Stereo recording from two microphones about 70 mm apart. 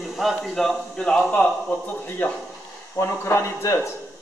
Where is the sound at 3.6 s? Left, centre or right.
Left.